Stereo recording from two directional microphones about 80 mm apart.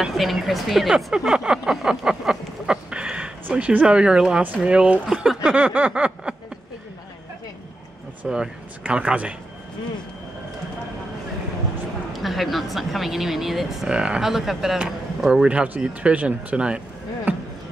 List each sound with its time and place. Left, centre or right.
0.0 s speech: centre
5.4 s speech: centre
8.3 s speech: centre
12.1 s speech: centre